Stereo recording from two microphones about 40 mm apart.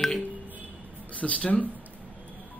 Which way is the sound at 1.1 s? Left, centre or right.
Left.